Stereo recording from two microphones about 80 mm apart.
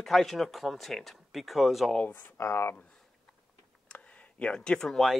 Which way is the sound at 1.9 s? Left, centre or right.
Left.